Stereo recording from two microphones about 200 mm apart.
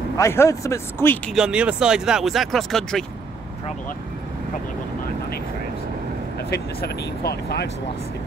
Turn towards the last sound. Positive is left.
turn(degrees=55)  # may be behind; listen again after turning